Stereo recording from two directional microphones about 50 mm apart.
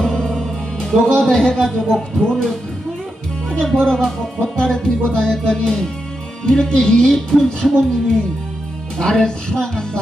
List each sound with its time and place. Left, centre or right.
0.0 s music: centre
1.3 s speech: centre
8.9 s speech: centre